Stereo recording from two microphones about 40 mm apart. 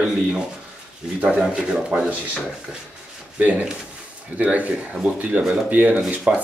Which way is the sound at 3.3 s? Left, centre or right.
Right.